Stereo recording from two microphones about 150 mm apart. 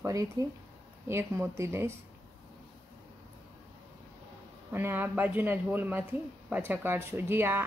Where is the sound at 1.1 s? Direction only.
20° right (ahead or behind).